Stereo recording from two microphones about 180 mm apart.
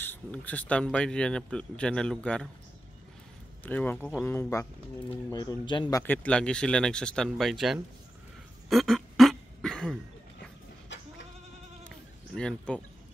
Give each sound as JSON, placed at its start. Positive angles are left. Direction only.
{"t": 0.0, "sound": "a man's voice", "side_deg": 10}
{"t": 3.6, "sound": "a man's voice", "side_deg": 10}
{"t": 6.0, "sound": "a man's voice", "side_deg": 5}
{"t": 8.6, "sound": "a sound", "side_deg": 0}
{"t": 10.9, "sound": "goat", "side_deg": 90}
{"t": 12.4, "sound": "a man's voice", "side_deg": 5}